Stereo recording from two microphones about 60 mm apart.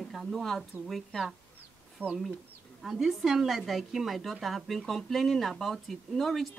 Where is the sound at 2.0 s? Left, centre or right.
Left.